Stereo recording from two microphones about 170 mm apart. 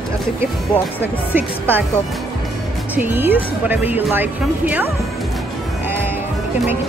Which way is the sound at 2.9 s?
10° right (ahead or behind).